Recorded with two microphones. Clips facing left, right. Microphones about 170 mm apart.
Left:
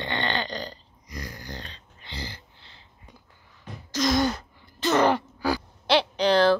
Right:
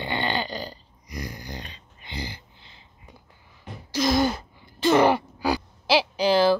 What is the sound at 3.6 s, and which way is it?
Throat clearing, 10° right (ahead or behind).